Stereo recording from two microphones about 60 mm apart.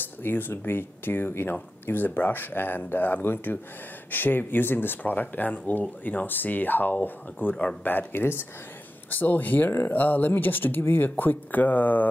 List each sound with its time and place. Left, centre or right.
0.2 s speech: left